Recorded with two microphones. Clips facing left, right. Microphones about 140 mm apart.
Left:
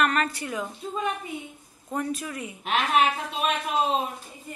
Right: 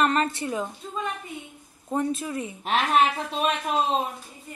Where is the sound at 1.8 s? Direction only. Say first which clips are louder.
Right 3 dB; 25° right (ahead or behind).